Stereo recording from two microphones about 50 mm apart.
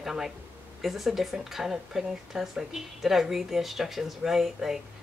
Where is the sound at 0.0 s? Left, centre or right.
Centre.